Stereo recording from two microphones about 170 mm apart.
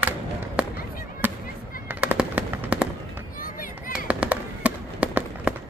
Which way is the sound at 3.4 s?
55° left (ahead or behind).